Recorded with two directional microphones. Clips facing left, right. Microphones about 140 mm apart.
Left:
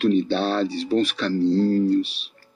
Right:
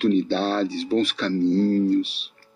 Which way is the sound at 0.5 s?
45° left (ahead or behind).